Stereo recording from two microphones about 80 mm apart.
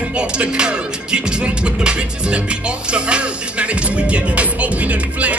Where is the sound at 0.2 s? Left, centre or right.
Centre.